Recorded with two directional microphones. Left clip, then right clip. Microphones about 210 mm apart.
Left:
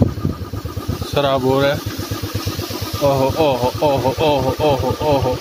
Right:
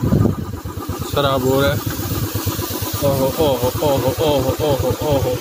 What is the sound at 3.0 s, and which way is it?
Speech, 20° left (ahead or behind).